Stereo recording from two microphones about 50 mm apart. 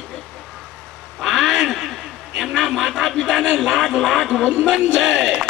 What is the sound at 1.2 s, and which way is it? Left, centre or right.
A man's voice, centre.